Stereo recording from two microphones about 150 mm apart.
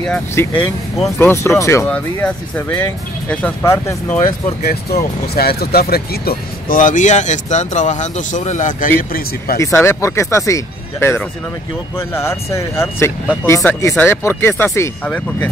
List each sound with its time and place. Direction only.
0.4 s speech: 15° left (ahead or behind)
1.9 s speech: 10° left (ahead or behind)
4.6 s speech: 90° left; by 8.9 s 60° left (ahead or behind)
9.6 s speech: 20° left (ahead or behind)